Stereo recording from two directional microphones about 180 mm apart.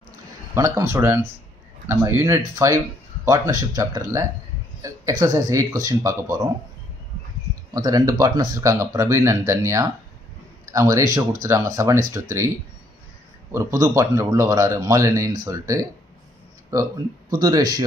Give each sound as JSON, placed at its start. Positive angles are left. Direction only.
{"t": 0.6, "sound": "speech", "side_deg": -15}
{"t": 7.7, "sound": "speech", "side_deg": -20}
{"t": 13.5, "sound": "speech", "side_deg": -15}